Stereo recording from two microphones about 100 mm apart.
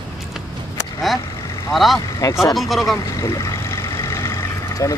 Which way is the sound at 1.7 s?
Centre (ahead or behind).